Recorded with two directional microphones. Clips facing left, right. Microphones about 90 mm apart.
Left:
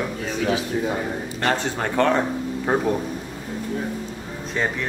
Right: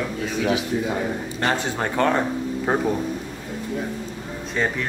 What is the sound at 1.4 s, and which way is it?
Speech, 10° right (ahead or behind).